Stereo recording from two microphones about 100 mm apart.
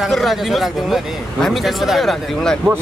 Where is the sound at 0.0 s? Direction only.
Centre (ahead or behind).